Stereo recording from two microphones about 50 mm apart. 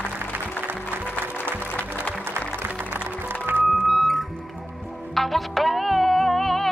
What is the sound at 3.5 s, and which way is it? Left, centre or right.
Music, right.